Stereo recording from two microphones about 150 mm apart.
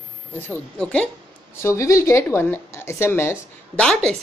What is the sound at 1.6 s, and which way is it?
Speech, 20° left (ahead or behind).